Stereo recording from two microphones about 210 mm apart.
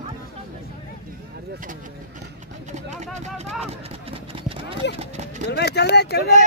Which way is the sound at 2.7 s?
35° right (ahead or behind).